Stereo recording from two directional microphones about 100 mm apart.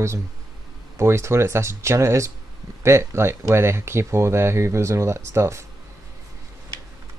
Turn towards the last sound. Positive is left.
turn(degrees=-30)  # may be behind; listen again after turning